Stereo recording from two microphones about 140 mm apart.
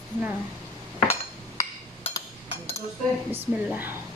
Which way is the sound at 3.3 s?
15° right (ahead or behind).